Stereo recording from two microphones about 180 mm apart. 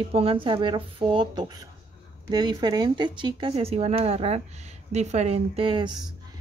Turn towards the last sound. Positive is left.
turn(degrees=-25)  # may be behind; listen again after turning